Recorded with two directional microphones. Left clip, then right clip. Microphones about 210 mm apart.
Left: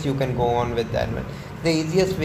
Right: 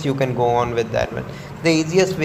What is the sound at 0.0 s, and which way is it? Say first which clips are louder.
A woman's voice: right 4 dB; 10° right (ahead or behind).